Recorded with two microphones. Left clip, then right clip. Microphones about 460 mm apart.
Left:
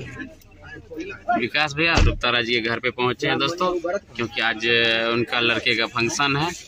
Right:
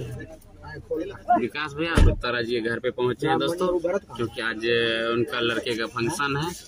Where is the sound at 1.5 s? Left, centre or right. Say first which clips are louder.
Left 7 dB; left.